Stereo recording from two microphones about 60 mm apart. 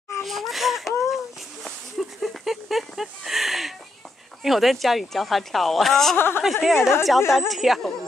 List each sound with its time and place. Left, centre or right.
0.2 s speech: centre
1.6 s a sound: centre
4.4 s speech: centre
6.1 s a woman's voice: left
6.6 s a woman's voice: centre